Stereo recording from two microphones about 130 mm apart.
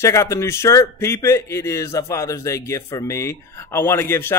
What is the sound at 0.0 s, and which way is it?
Speech, 25° left (ahead or behind).